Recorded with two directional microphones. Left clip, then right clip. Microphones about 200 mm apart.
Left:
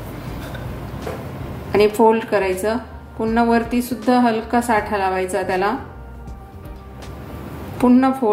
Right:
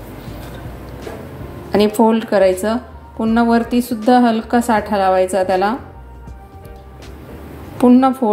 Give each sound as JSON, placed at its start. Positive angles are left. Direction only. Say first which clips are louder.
{"t": 1.7, "sound": "a woman's voice", "louder": "even", "side_deg": -30}
{"t": 7.7, "sound": "a woman's voice", "louder": "right 4 dB", "side_deg": -30}